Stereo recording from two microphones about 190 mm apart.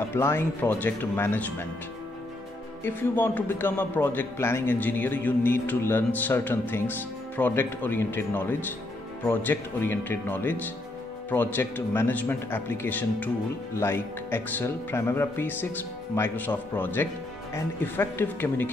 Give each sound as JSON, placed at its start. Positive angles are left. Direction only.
{"t": 0.1, "sound": "a man's voice", "side_deg": 10}
{"t": 2.8, "sound": "a man's voice", "side_deg": 10}